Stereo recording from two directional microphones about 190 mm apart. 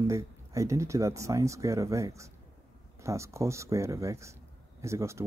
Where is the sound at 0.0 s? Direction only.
15° right (ahead or behind).